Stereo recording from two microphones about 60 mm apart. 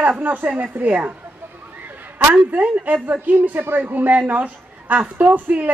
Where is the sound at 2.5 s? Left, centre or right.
Right.